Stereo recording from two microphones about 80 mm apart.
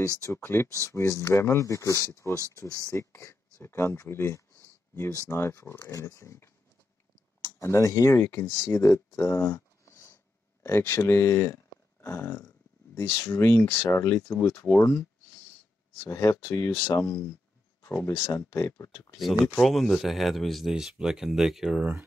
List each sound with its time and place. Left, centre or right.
0.4 s speech: left
10.6 s speech: left
14.4 s speech: left
16.0 s speech: left
19.1 s speech: centre